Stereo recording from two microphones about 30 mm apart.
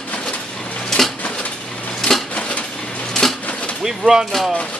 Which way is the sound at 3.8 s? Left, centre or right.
Centre.